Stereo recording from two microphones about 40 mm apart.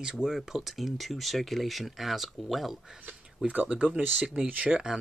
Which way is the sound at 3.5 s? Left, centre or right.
Right.